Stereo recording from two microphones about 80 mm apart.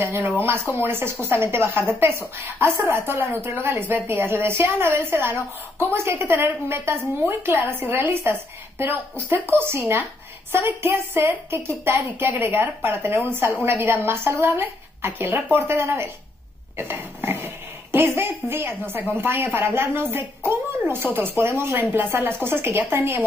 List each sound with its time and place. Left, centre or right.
0.0 s a woman's voice: right